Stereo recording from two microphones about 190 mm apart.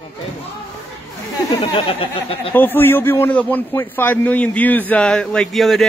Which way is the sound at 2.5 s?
10° left (ahead or behind).